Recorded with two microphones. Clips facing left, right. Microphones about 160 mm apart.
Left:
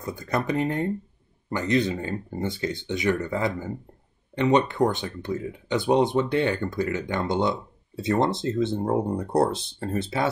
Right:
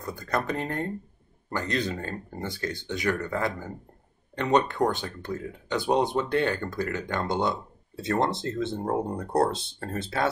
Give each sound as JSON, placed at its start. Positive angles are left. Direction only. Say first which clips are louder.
{"t": 0.0, "sound": "speech", "louder": "left 2 dB", "side_deg": 15}